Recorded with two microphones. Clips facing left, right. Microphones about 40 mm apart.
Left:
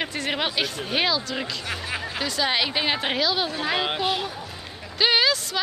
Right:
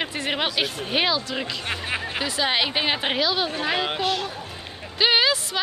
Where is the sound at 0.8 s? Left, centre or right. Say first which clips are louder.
Right 1 dB; centre.